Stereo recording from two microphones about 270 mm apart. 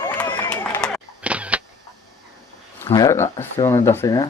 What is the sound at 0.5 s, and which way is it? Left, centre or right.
Single-lens reflex camera, centre.